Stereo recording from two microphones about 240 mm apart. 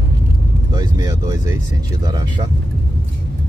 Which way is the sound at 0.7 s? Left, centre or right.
Centre.